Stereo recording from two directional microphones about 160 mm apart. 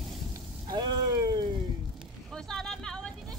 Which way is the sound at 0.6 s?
25° right (ahead or behind).